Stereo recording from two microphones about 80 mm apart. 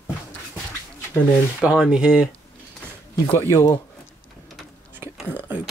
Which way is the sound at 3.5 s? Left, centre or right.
Left.